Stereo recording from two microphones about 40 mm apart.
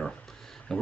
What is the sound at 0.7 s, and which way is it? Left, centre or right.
Speech, centre.